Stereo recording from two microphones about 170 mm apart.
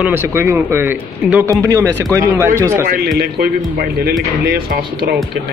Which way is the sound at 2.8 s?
65° right (ahead or behind).